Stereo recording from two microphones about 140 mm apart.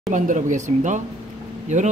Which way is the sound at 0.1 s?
60° right (ahead or behind).